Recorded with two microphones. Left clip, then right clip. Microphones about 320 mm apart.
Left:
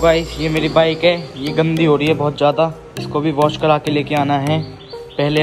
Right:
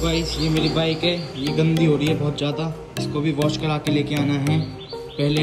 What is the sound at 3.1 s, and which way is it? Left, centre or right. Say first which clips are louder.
Speech: left 8 dB; left.